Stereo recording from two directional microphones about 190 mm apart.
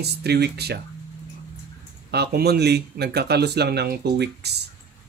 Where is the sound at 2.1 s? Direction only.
60° right (ahead or behind).